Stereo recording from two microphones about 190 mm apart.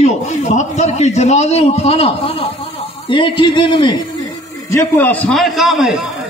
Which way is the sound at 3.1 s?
25° left (ahead or behind).